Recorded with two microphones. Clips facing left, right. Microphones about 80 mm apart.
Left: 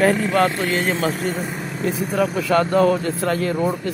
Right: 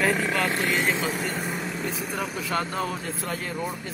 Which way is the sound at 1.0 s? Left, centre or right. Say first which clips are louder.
Left 6 dB; left.